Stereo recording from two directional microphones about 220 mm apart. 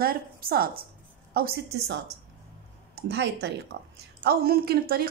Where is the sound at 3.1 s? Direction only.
50° right (ahead or behind).